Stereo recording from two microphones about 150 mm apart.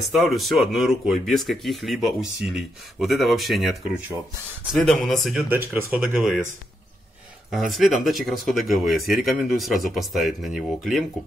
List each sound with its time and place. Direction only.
0.1 s speech: centre (ahead or behind)
4.7 s speech: 5° left (ahead or behind)
5.5 s speech: 10° right (ahead or behind)
7.5 s speech: centre (ahead or behind)